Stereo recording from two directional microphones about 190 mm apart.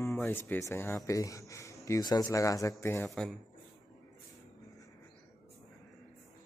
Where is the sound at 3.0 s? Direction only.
Centre (ahead or behind).